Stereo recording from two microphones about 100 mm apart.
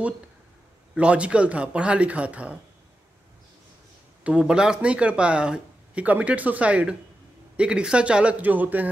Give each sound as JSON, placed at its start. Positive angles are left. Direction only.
{"t": 0.9, "sound": "speech", "side_deg": -10}
{"t": 4.2, "sound": "speech", "side_deg": -10}